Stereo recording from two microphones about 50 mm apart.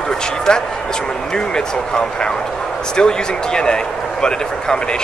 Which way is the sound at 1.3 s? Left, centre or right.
Centre.